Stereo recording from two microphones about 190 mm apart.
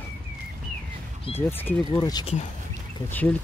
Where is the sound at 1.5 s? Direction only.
10° left (ahead or behind).